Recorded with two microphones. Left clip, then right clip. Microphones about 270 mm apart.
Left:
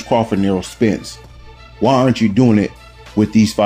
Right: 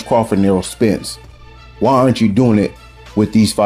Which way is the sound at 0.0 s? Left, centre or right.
Centre.